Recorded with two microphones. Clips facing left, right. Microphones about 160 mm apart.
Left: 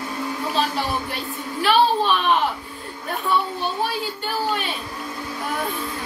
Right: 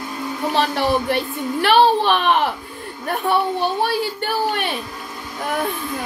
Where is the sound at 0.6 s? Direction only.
65° right (ahead or behind).